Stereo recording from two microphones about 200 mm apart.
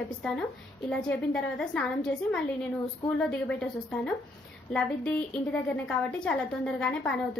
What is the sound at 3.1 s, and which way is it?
A woman's voice, 5° left (ahead or behind).